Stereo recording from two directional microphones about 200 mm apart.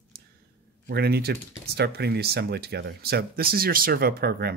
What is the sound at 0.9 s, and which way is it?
Speech, 55° right (ahead or behind).